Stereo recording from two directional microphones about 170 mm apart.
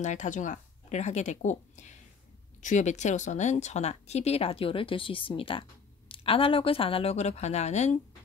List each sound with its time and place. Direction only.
0.0 s speech: 45° left (ahead or behind)